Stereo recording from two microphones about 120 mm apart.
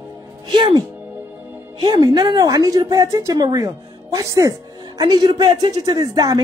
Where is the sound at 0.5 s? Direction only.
40° right (ahead or behind).